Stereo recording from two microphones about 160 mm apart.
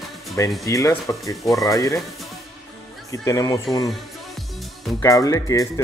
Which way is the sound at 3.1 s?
20° left (ahead or behind).